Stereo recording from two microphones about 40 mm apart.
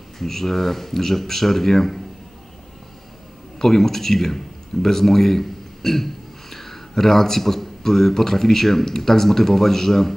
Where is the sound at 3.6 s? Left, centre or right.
Centre.